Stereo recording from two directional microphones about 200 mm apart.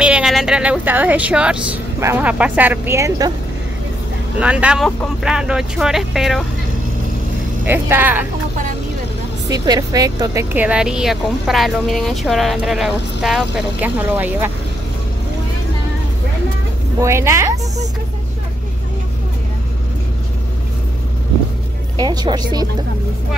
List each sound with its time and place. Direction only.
0.0 s speech: 5° right (ahead or behind)
4.4 s speech: 5° right (ahead or behind)
7.6 s speech: 10° right (ahead or behind)
9.5 s speech: 20° right (ahead or behind)
17.0 s speech: 15° right (ahead or behind)
22.0 s speech: 20° right (ahead or behind)